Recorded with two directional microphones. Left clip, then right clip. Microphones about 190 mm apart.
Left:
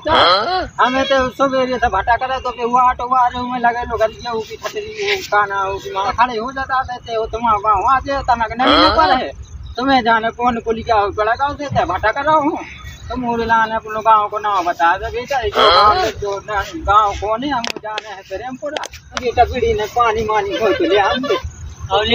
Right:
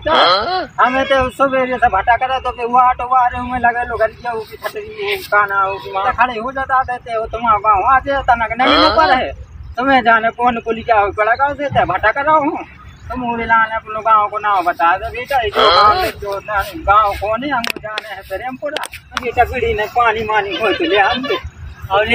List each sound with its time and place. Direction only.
0.0 s a man's voice: centre (ahead or behind)
4.9 s a man's voice: 10° left (ahead or behind)
18.7 s speech: 45° right (ahead or behind)
19.2 s a man's voice: centre (ahead or behind)
21.1 s speech: 50° right (ahead or behind)